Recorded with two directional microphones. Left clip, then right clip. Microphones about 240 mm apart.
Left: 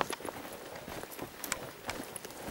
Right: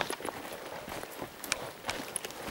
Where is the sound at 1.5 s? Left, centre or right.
Centre.